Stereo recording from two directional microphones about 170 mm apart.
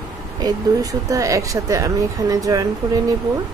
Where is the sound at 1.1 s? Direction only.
20° right (ahead or behind).